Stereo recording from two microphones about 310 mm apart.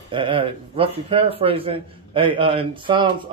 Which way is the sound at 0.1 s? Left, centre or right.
Centre.